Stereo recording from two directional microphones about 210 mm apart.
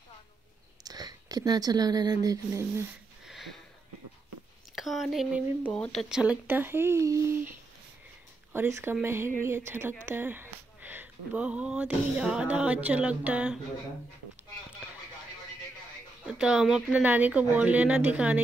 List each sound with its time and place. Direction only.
0.8 s speech: 20° right (ahead or behind)
3.3 s sniff: centre (ahead or behind)
4.7 s speech: centre (ahead or behind)
8.5 s speech: 10° right (ahead or behind)
16.3 s speech: 5° right (ahead or behind)